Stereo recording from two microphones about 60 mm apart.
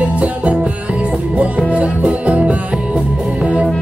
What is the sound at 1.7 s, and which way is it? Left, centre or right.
Music, right.